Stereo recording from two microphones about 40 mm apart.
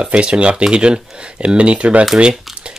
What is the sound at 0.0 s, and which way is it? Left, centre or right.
Speech, right.